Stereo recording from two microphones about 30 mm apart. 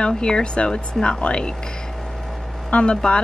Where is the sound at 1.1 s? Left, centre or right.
Left.